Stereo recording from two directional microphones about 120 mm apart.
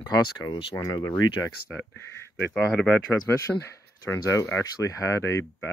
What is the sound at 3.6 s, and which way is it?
Speech, 25° left (ahead or behind).